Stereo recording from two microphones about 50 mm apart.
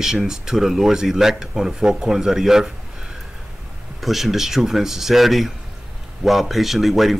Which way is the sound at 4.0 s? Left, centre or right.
Centre.